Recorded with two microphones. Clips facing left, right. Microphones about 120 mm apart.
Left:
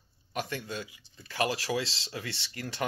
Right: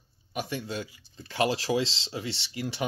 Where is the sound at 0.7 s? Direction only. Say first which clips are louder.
Right 3 dB; 35° right (ahead or behind).